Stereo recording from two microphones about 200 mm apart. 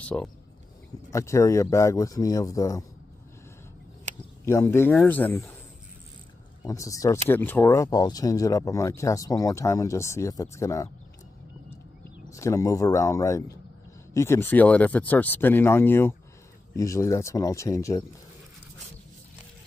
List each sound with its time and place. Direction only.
0.0 s speech: 5° left (ahead or behind)
4.5 s speech: 15° left (ahead or behind)
6.6 s speech: 15° left (ahead or behind)
12.0 s speech: 15° left (ahead or behind)